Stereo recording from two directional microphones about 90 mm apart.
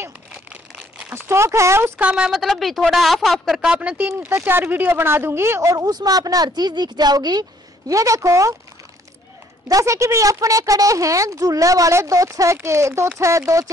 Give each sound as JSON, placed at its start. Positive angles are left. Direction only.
{"t": 0.3, "sound": "crumpling", "side_deg": -10}
{"t": 1.1, "sound": "speech", "side_deg": -30}
{"t": 2.0, "sound": "a woman's voice", "side_deg": -15}
{"t": 2.4, "sound": "a woman's voice", "side_deg": 0}
{"t": 4.2, "sound": "speech", "side_deg": -25}
{"t": 7.9, "sound": "speech", "side_deg": -35}
{"t": 9.7, "sound": "speech", "side_deg": -35}